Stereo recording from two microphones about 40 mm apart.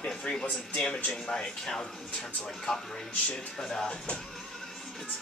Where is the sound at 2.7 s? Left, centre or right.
Centre.